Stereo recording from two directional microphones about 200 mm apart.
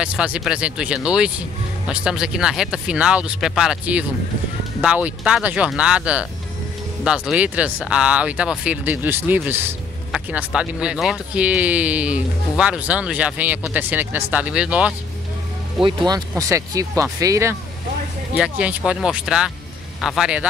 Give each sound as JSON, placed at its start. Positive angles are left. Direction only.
{"t": 0.0, "sound": "speech", "side_deg": -5}
{"t": 16.1, "sound": "speech", "side_deg": -15}